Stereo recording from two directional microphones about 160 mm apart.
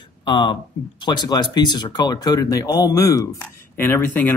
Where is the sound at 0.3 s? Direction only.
30° left (ahead or behind).